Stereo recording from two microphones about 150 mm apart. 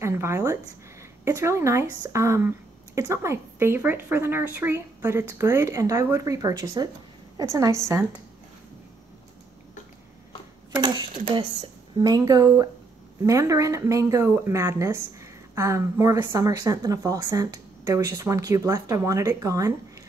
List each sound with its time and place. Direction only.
0.0 s speech: 15° right (ahead or behind)
10.7 s speech: 30° right (ahead or behind)